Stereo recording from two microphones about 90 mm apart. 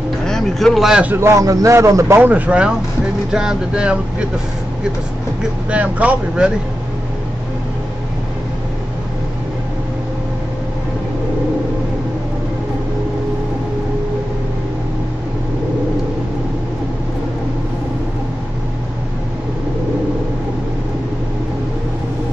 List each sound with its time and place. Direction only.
0.3 s speech: 5° left (ahead or behind)
1.0 s a man's voice: 25° right (ahead or behind)
2.1 s speech: 20° right (ahead or behind)
5.7 s speech: 15° right (ahead or behind)